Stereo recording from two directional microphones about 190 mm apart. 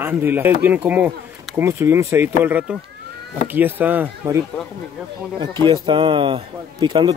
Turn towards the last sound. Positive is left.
turn(degrees=-25)  # may be behind; listen again after turning